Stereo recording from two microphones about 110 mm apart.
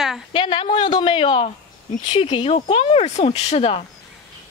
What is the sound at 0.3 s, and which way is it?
Speech, 50° left (ahead or behind).